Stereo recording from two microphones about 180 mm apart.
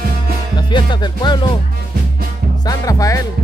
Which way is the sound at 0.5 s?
25° left (ahead or behind).